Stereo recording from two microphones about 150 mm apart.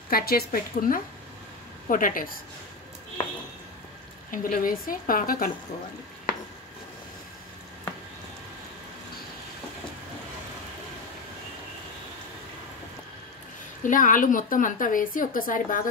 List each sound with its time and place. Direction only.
0.1 s a woman's voice: 90° left; by 2.4 s 70° left (ahead or behind)
4.3 s a woman's voice: 70° left (ahead or behind)
13.8 s a woman's voice: 60° left (ahead or behind)